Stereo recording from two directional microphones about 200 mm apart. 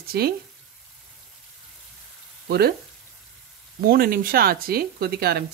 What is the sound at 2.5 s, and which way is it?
Speech, 55° right (ahead or behind).